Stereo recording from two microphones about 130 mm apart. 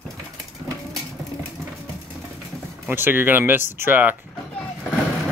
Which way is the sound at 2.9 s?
15° right (ahead or behind).